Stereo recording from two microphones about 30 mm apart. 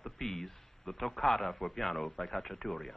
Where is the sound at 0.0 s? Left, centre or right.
Centre.